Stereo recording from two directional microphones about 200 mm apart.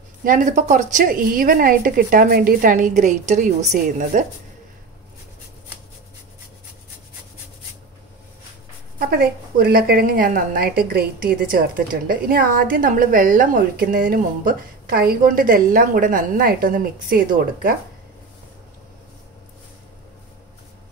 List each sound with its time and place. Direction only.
0.2 s a woman's voice: 40° right (ahead or behind)
8.9 s a woman's voice: 50° right (ahead or behind)